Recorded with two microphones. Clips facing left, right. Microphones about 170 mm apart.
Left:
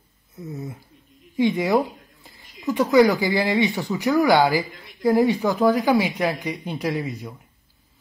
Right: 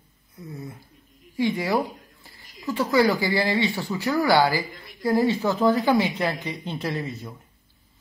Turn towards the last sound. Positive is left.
turn(degrees=10)  # may be behind; listen again after turning